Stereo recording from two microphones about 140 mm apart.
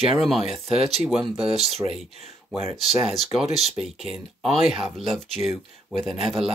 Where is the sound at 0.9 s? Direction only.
Centre (ahead or behind).